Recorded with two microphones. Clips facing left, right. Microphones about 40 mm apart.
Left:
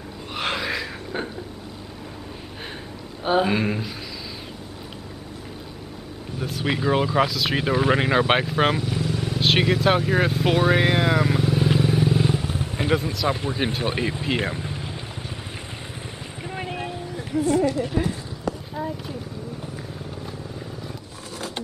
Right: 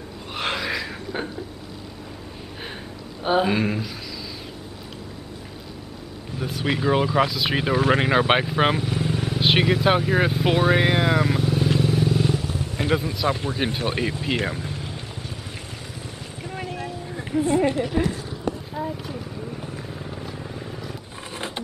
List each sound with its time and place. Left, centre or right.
0.3 s a sound: centre
3.3 s speech: centre
6.4 s speech: centre
9.2 s vehicle: centre
12.8 s speech: centre
14.2 s vehicle: centre
16.4 s vehicle: centre
17.4 s speech: right
18.8 s a sound: centre